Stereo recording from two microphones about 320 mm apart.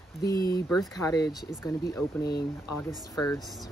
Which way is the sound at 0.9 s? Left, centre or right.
Centre.